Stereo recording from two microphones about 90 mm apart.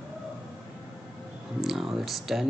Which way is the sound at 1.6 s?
5° right (ahead or behind).